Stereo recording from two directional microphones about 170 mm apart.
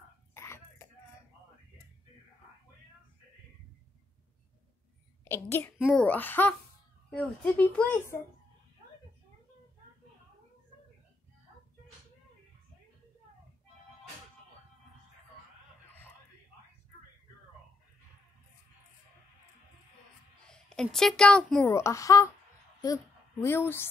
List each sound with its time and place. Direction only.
0.3 s throat clearing: 15° left (ahead or behind)
5.2 s a woman's voice: 15° left (ahead or behind)
5.8 s a child's voice: centre (ahead or behind)
6.0 s a woman's voice: 10° left (ahead or behind)
20.4 s a child's voice: 5° left (ahead or behind)
21.6 s a woman's voice: 15° left (ahead or behind)
23.4 s a woman's voice: 15° left (ahead or behind)